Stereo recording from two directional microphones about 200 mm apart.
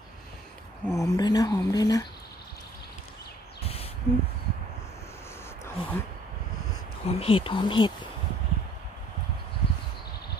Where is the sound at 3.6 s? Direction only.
30° left (ahead or behind).